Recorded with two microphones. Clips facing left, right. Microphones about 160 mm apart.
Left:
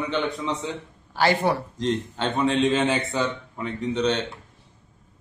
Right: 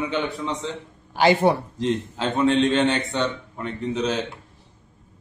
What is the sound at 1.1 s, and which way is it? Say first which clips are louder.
Speech: right 4 dB; 20° right (ahead or behind).